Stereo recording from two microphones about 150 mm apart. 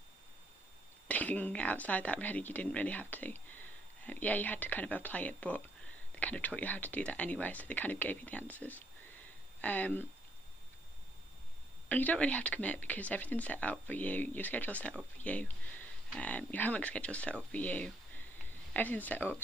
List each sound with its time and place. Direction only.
1.0 s speech: 10° left (ahead or behind)
11.9 s speech: 10° left (ahead or behind)